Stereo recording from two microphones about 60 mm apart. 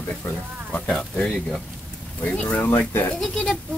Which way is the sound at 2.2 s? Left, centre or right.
Left.